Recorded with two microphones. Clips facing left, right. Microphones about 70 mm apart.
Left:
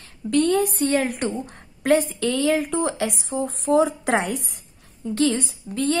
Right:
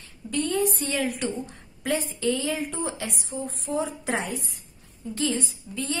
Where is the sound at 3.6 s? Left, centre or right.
Left.